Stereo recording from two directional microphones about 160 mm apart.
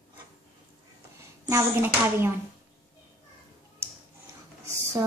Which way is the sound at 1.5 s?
15° right (ahead or behind).